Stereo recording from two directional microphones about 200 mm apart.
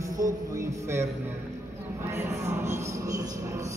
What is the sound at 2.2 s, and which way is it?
Speech, 10° right (ahead or behind).